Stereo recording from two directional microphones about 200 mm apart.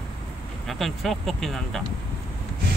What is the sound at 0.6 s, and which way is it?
Speech, centre (ahead or behind).